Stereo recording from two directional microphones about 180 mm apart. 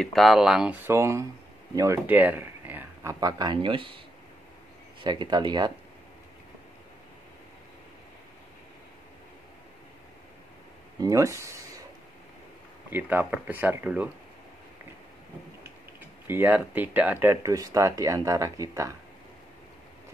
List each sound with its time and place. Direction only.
0.0 s speech: centre (ahead or behind)
0.8 s speech: 15° right (ahead or behind)
5.0 s speech: 25° right (ahead or behind)
11.0 s speech: 20° right (ahead or behind)
12.9 s speech: 10° right (ahead or behind)
16.3 s speech: 10° right (ahead or behind)